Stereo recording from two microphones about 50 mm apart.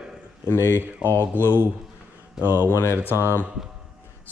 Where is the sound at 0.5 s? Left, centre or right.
Left.